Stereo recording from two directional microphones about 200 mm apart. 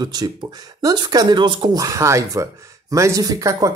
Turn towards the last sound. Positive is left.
turn(degrees=-15)  # may be behind; listen again after turning